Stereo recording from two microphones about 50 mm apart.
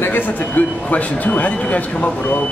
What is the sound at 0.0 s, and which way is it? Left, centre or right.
Speech, left.